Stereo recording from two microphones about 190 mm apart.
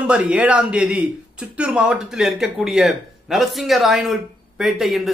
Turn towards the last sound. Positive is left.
turn(degrees=0)  # may be behind; listen again after turning